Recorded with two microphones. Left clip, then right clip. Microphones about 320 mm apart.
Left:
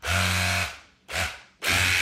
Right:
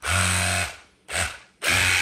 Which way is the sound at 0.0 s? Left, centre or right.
Right.